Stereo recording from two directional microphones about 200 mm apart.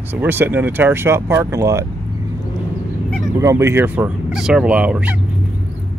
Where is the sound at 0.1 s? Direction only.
10° right (ahead or behind).